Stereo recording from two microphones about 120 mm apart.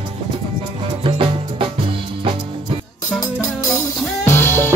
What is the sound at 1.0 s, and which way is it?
Music, 50° right (ahead or behind).